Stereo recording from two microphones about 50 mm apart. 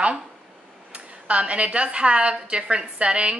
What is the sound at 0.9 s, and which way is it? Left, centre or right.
A woman's voice, right.